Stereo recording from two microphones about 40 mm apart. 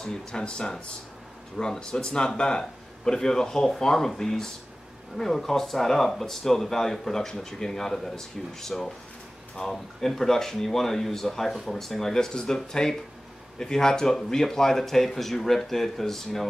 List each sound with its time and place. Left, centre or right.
0.1 s speech: left
11.5 s speech: centre
11.8 s speech: centre